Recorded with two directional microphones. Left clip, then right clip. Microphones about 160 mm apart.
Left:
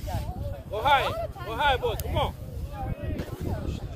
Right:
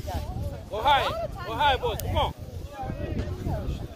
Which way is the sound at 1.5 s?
85° left.